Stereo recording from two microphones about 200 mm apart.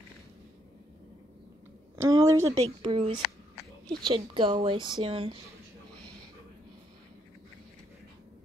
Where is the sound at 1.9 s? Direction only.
15° right (ahead or behind).